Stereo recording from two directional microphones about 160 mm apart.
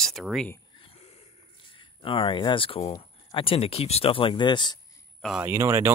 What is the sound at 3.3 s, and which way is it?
Speech, 35° left (ahead or behind).